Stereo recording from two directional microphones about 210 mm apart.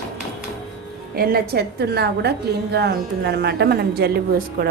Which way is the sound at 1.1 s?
45° right (ahead or behind).